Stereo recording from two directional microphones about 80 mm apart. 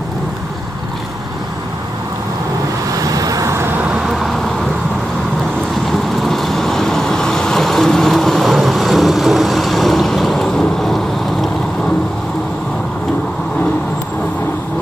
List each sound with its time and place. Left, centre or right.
3.0 s vehicle: right
4.1 s vehicle: centre
5.9 s vehicle: centre